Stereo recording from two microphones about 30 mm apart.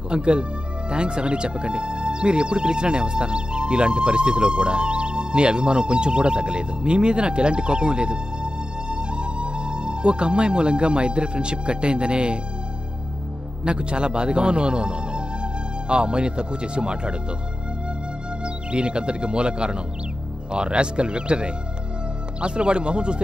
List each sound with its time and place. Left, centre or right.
0.1 s speech: right
13.7 s a man's voice: right
18.4 s speech: right